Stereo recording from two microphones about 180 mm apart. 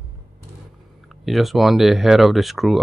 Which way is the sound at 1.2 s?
Centre (ahead or behind).